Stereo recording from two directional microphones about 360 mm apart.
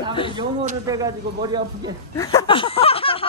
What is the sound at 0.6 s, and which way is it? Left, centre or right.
Speech, centre.